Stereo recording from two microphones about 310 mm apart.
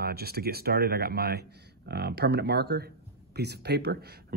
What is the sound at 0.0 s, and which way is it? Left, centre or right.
Speech, right.